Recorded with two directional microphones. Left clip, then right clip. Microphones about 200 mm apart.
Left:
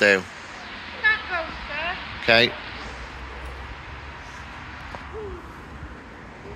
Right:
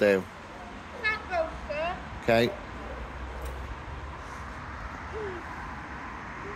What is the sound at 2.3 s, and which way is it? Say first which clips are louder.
Speech: left 7 dB; 10° right (ahead or behind).